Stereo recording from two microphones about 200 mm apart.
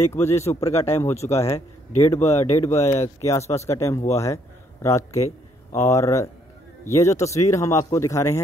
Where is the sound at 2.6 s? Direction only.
35° left (ahead or behind).